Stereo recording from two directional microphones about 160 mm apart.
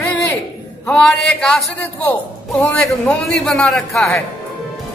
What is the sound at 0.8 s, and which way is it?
A woman's voice, 5° left (ahead or behind).